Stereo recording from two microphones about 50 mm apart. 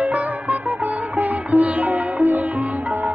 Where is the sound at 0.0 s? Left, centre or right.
Right.